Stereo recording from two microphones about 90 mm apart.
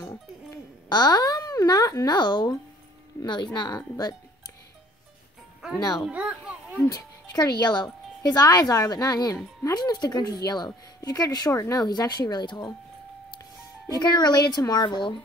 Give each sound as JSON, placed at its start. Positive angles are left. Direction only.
{"t": 0.8, "sound": "a woman's voice", "side_deg": 50}
{"t": 3.5, "sound": "a woman's voice", "side_deg": 50}
{"t": 5.9, "sound": "a child's voice", "side_deg": -10}
{"t": 6.9, "sound": "a woman's voice", "side_deg": 50}
{"t": 11.5, "sound": "speech", "side_deg": 35}
{"t": 11.8, "sound": "a woman's voice", "side_deg": 50}
{"t": 13.9, "sound": "a woman's voice", "side_deg": 50}